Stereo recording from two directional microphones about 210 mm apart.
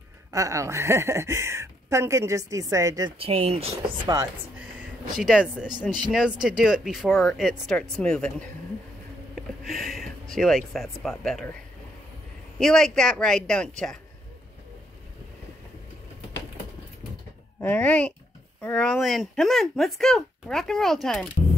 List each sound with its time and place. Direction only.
0.3 s speech: 15° right (ahead or behind)
3.2 s speech: 25° right (ahead or behind)
5.1 s speech: 5° right (ahead or behind)
12.5 s speech: 5° left (ahead or behind)
17.6 s speech: 10° left (ahead or behind)